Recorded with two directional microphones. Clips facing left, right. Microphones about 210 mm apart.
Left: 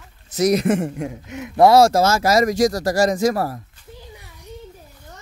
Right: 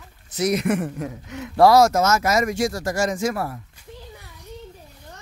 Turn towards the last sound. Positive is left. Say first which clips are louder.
# left 5 dB
turn(degrees=40)  # may be behind; listen again after turning